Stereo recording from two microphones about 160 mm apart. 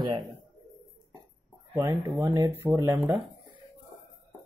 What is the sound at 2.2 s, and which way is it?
Speech, 20° right (ahead or behind).